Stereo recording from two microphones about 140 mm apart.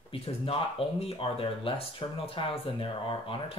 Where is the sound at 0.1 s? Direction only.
45° left (ahead or behind).